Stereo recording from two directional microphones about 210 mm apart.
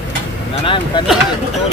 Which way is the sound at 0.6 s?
25° left (ahead or behind).